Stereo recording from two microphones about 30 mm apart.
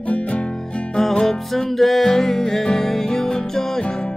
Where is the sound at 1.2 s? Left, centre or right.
Centre.